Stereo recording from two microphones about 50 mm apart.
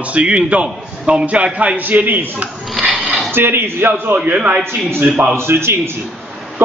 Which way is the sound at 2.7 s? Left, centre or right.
Centre.